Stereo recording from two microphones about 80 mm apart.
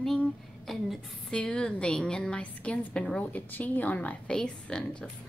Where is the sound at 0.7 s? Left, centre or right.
Centre.